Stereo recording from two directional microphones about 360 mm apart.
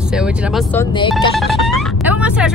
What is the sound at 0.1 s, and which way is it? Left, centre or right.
Speech, centre.